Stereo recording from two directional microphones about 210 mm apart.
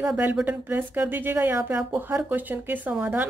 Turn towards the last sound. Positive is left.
turn(degrees=-5)  # may be behind; listen again after turning